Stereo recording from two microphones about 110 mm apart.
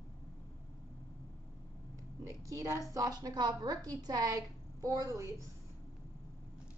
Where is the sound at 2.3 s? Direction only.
30° right (ahead or behind).